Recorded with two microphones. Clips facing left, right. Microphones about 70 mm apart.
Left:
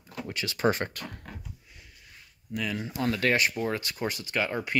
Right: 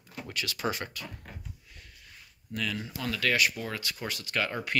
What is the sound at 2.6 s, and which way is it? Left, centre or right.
Speech, centre.